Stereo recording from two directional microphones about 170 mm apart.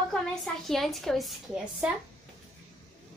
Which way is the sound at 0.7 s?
Centre (ahead or behind).